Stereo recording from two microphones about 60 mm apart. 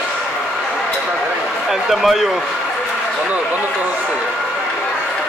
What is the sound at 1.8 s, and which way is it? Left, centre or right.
Speech, centre.